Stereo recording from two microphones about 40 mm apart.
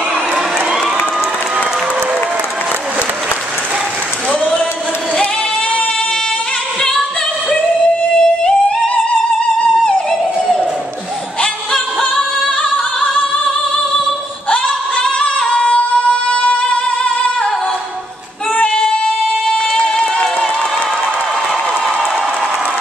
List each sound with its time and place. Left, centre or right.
6.8 s singing: centre
7.7 s music: left
14.5 s singing: left
18.7 s child singing: left
19.4 s a sound: centre